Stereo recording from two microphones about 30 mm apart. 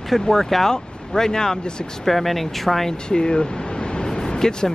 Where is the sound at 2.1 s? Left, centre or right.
Centre.